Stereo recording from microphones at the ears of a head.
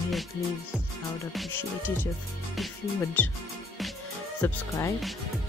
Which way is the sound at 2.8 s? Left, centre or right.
Left.